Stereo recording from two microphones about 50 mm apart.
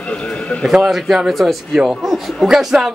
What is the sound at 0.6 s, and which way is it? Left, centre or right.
A man's voice, centre.